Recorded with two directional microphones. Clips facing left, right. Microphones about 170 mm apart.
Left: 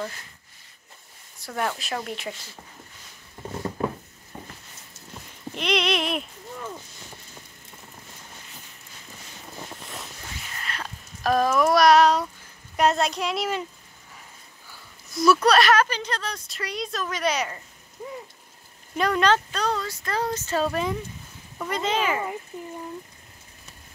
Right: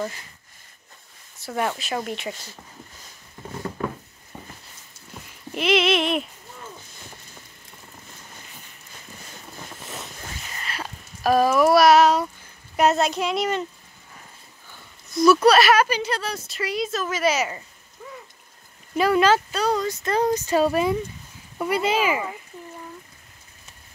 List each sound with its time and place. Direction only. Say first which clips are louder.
1.4 s speech: right 2 dB; 5° right (ahead or behind)
5.5 s speech: right 4 dB; 5° right (ahead or behind)
10.6 s a sound: right 1 dB; 5° right (ahead or behind)
12.7 s speech: right 2 dB; 5° right (ahead or behind)
15.0 s speech: right 4 dB; centre (ahead or behind)
18.0 s a sound: left 4 dB; 20° left (ahead or behind)
18.9 s speech: right 3 dB; 5° right (ahead or behind)